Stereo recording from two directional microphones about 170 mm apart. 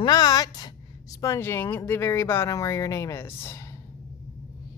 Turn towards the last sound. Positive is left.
turn(degrees=15)  # may be behind; listen again after turning